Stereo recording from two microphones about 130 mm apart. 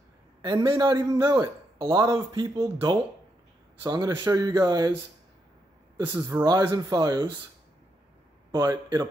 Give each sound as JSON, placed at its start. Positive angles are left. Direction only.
{"t": 0.4, "sound": "speech", "side_deg": -30}
{"t": 5.9, "sound": "speech", "side_deg": -20}
{"t": 8.5, "sound": "speech", "side_deg": -30}